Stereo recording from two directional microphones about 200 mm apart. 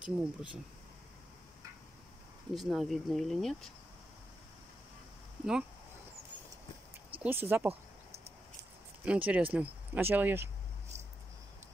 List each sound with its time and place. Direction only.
0.0 s speech: 25° left (ahead or behind)
2.5 s speech: centre (ahead or behind)
5.4 s speech: 5° right (ahead or behind)
7.2 s speech: 10° right (ahead or behind)
9.0 s speech: 5° right (ahead or behind)